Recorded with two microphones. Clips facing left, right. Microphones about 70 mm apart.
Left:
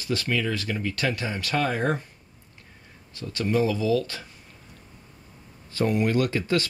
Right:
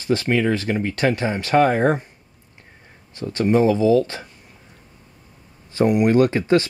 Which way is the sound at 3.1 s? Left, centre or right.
Right.